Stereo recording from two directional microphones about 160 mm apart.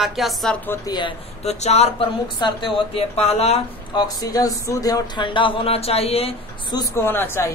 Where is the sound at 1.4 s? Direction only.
40° left (ahead or behind).